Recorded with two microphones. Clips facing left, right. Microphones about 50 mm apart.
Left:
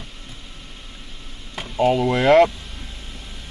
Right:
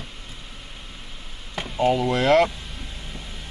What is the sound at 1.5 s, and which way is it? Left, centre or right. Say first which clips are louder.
Speech: left 2 dB; centre.